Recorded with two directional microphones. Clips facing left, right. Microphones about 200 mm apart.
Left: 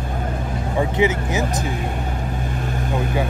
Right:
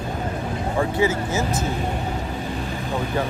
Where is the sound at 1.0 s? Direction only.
20° left (ahead or behind).